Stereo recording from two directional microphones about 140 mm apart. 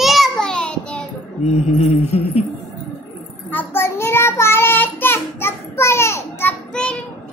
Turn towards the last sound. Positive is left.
turn(degrees=10)  # may be behind; listen again after turning